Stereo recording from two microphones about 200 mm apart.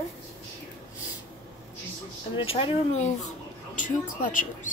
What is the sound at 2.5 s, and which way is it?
A woman's voice, 25° left (ahead or behind).